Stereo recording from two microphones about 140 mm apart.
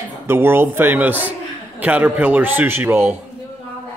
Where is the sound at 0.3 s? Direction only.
15° right (ahead or behind).